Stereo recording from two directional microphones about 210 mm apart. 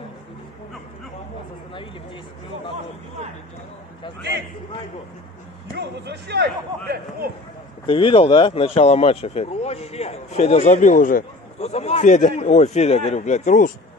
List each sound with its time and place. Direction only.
5.8 s speech: 50° right (ahead or behind)
7.8 s speech: 25° left (ahead or behind)